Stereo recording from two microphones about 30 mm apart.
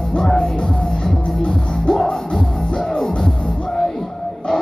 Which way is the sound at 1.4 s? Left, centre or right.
Centre.